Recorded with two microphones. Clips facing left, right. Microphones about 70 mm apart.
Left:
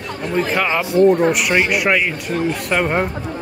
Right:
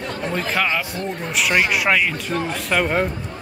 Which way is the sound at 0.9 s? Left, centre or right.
Left.